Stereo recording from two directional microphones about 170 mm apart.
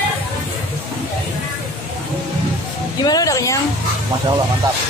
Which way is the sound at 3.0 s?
20° left (ahead or behind).